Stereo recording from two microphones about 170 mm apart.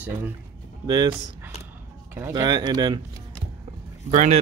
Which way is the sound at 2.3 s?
25° right (ahead or behind).